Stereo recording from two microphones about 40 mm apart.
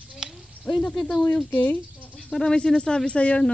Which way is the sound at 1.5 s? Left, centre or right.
Left.